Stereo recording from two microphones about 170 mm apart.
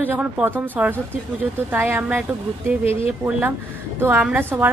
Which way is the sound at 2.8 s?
35° left (ahead or behind).